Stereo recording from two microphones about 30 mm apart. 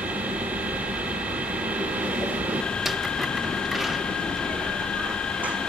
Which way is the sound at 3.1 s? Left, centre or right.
Centre.